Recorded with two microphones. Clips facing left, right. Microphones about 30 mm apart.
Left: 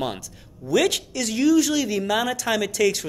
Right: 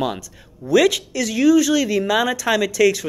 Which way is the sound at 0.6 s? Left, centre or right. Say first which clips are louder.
Right 5 dB; right.